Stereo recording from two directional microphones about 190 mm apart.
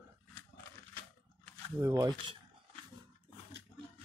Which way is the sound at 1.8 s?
20° right (ahead or behind).